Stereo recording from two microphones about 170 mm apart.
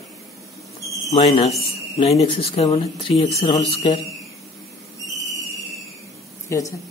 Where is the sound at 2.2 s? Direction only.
35° left (ahead or behind).